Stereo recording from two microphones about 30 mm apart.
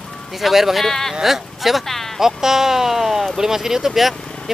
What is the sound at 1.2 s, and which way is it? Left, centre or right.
Speech, centre.